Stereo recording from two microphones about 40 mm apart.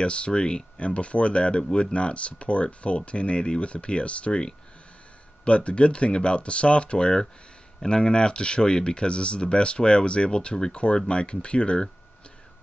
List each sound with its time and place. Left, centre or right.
0.0 s speech: left